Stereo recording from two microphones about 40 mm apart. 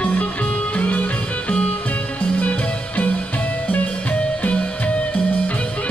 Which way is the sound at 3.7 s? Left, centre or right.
Left.